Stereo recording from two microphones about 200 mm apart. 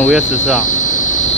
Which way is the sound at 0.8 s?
40° left (ahead or behind).